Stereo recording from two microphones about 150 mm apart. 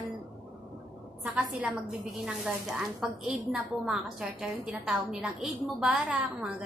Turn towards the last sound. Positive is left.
turn(degrees=-5)  # may be behind; listen again after turning